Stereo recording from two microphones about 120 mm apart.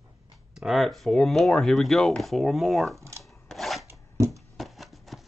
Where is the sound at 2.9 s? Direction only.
25° right (ahead or behind).